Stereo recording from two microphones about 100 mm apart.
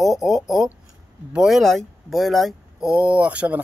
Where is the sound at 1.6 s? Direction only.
Centre (ahead or behind).